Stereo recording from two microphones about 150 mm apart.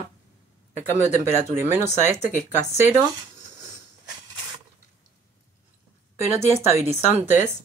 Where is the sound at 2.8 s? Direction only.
20° right (ahead or behind).